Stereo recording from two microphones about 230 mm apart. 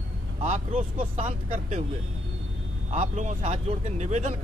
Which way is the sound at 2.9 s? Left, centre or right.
Right.